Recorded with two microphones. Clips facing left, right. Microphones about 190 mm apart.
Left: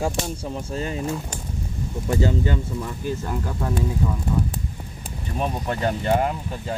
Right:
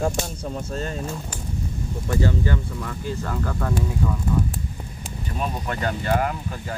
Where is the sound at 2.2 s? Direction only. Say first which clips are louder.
Left 1 dB; 20° left (ahead or behind).